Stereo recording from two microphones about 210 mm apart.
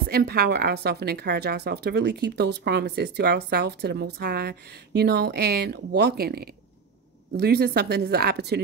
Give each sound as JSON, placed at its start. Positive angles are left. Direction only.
{"t": 0.1, "sound": "speech", "side_deg": -50}